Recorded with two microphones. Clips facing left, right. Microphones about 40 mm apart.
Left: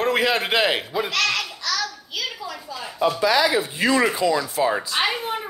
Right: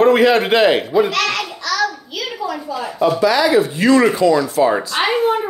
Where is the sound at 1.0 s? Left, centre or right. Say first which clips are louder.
Right 5 dB; centre.